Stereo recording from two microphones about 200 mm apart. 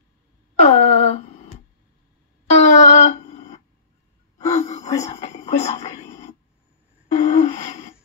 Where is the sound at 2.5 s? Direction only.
35° left (ahead or behind).